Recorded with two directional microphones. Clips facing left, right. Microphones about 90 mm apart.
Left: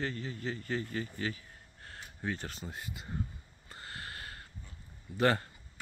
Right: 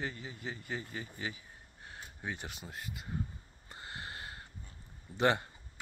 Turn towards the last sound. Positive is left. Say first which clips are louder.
# left 1 dB
turn(degrees=-20)  # may be behind; listen again after turning